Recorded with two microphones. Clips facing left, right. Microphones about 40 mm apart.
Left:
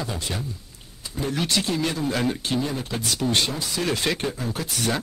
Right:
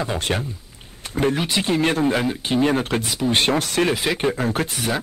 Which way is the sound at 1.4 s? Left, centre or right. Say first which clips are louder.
Right 4 dB; right.